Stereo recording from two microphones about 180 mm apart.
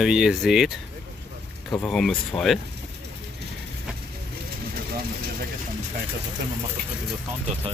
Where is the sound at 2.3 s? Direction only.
20° left (ahead or behind).